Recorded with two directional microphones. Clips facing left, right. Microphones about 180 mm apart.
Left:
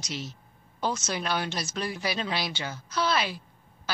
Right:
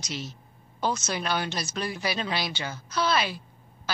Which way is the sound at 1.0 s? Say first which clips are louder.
Right 1 dB; 60° right (ahead or behind).